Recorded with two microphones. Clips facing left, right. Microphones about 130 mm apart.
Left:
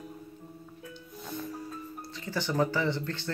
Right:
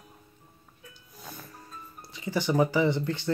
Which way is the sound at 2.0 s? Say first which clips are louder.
Right 5 dB; 15° right (ahead or behind).